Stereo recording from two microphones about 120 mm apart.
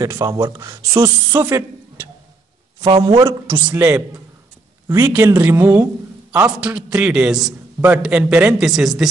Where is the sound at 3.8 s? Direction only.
10° right (ahead or behind).